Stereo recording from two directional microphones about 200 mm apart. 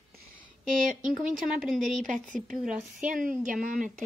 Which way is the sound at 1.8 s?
40° right (ahead or behind).